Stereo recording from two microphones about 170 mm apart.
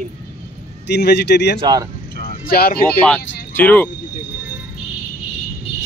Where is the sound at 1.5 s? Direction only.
25° right (ahead or behind).